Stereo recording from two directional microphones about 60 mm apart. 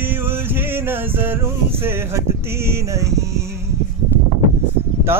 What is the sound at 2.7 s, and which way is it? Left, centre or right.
Music, right.